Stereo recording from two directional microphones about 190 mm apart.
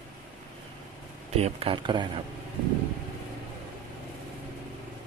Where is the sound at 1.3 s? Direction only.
30° right (ahead or behind).